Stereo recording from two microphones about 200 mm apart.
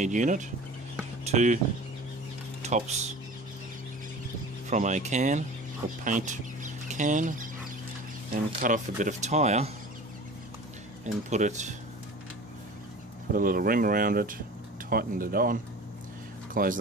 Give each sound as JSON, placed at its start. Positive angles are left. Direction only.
{"t": 0.0, "sound": "speech", "side_deg": -40}
{"t": 2.6, "sound": "speech", "side_deg": -35}
{"t": 4.6, "sound": "speech", "side_deg": -35}
{"t": 8.5, "sound": "speech", "side_deg": -40}
{"t": 11.2, "sound": "speech", "side_deg": -35}
{"t": 13.3, "sound": "speech", "side_deg": -45}